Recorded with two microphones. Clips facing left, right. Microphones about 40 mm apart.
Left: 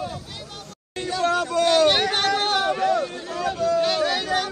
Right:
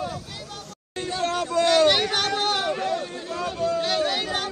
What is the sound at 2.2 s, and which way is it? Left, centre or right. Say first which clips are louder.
Chatter: left 3 dB; left.